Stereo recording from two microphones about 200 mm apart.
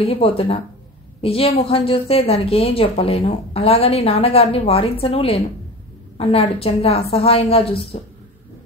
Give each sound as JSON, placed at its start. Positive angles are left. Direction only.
{"t": 0.0, "sound": "a woman's voice", "side_deg": 30}